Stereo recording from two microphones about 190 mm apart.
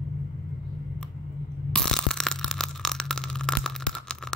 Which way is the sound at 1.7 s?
5° left (ahead or behind).